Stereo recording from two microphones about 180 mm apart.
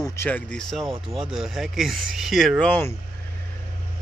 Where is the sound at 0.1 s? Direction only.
10° left (ahead or behind).